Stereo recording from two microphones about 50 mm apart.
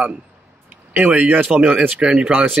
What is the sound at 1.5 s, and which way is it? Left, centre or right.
Speech, right.